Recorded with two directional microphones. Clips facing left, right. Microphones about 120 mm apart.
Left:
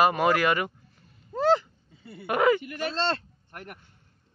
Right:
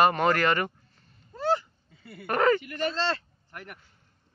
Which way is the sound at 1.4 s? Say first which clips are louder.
Left 4 dB; 90° left.